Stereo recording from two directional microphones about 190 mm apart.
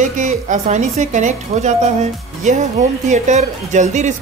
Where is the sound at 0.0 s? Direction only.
40° right (ahead or behind).